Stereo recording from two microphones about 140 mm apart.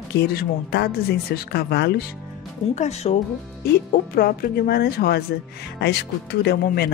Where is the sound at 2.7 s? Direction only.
55° left (ahead or behind).